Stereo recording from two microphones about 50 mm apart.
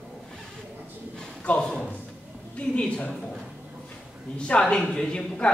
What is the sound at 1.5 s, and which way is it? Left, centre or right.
A woman's voice, centre.